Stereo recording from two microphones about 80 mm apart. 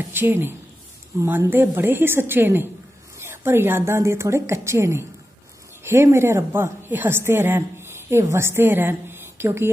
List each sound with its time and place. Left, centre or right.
0.1 s a woman's voice: right